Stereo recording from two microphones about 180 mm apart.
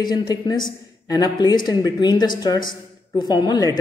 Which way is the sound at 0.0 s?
20° left (ahead or behind).